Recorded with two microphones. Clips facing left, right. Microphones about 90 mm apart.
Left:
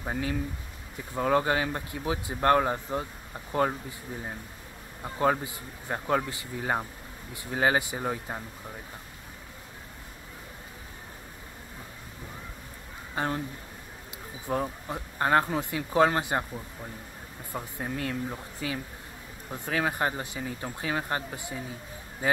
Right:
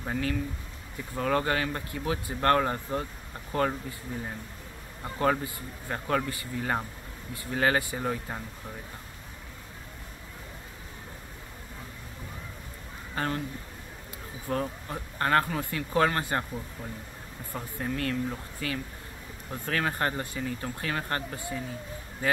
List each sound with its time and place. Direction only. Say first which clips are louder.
0.0 s speech: even; 15° left (ahead or behind)
4.1 s speech: even; 15° left (ahead or behind)
13.1 s speech: left 1 dB; 20° left (ahead or behind)
14.5 s speech: left 1 dB; 15° left (ahead or behind)
17.5 s speech: right 1 dB; 15° left (ahead or behind)